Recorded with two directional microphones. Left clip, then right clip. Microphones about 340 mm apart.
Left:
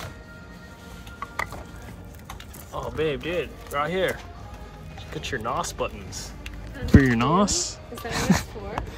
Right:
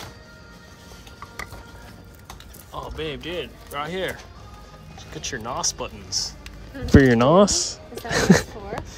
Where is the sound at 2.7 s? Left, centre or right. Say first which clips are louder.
Left 4 dB; centre.